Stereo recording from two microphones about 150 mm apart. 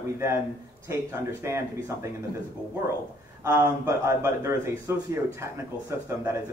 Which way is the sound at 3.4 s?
20° right (ahead or behind).